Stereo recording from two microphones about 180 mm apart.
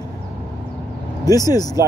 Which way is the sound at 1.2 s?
20° left (ahead or behind).